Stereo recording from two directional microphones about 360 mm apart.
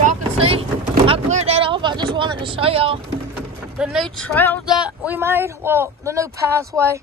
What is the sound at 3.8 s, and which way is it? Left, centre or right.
Speech, centre.